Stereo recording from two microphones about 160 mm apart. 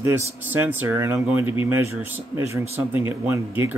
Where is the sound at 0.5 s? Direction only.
10° right (ahead or behind).